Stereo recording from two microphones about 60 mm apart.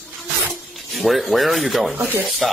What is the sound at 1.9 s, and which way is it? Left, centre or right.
Speech, right.